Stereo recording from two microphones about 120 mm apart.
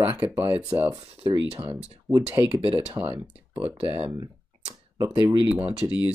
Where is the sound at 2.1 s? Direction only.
Centre (ahead or behind).